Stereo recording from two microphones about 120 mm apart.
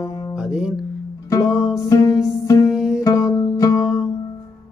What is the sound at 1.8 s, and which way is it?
Music, 25° left (ahead or behind).